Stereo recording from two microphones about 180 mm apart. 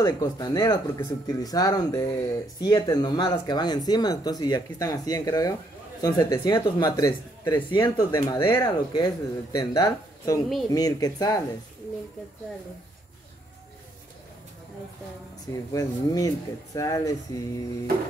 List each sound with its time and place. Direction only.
0.0 s speech: 20° left (ahead or behind)
15.7 s speech: 20° left (ahead or behind)